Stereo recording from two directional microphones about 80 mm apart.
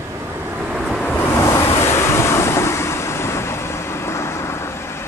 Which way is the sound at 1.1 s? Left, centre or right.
Left.